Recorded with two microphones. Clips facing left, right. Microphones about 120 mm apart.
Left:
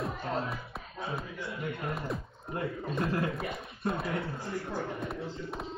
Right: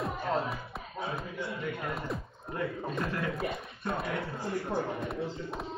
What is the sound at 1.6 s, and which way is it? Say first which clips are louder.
Music: left 2 dB; 25° left (ahead or behind).